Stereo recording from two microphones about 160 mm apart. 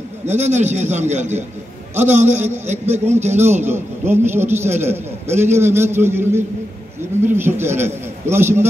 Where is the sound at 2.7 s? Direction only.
45° right (ahead or behind).